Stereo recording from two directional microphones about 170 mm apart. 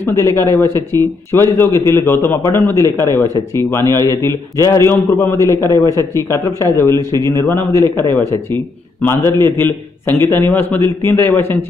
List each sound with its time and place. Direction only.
0.0 s a man's voice: 15° left (ahead or behind)